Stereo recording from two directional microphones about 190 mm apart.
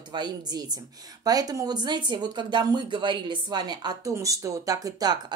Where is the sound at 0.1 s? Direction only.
20° right (ahead or behind).